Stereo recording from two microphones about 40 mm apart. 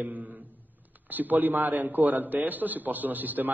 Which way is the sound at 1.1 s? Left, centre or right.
Right.